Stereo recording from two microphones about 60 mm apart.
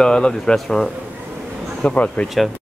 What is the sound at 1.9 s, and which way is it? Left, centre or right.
Speech, left.